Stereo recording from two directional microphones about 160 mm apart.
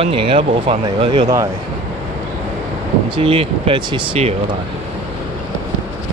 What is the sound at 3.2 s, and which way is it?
Speech, 35° right (ahead or behind).